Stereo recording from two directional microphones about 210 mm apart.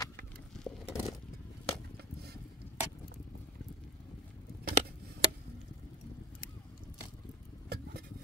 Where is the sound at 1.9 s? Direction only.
50° right (ahead or behind).